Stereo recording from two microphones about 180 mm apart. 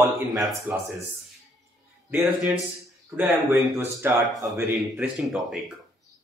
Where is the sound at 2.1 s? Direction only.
Centre (ahead or behind).